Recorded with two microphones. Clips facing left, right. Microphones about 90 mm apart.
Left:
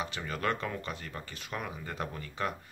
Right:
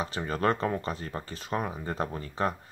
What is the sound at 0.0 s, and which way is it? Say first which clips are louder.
Speech: right 6 dB; 35° right (ahead or behind).